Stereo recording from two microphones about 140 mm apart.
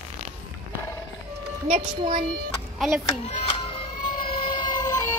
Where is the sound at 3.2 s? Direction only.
35° left (ahead or behind).